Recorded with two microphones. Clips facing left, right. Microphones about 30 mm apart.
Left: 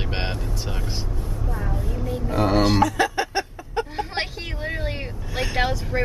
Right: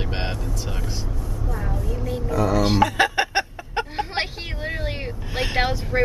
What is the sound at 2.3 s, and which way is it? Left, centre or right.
Speech, left.